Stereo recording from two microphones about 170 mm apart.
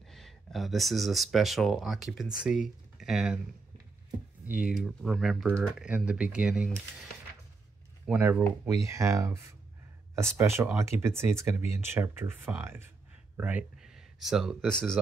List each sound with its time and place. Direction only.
0.0 s speech: centre (ahead or behind)
4.5 s speech: 5° right (ahead or behind)
5.9 s speech: 5° right (ahead or behind)
8.1 s speech: 10° right (ahead or behind); by 15.0 s 5° left (ahead or behind)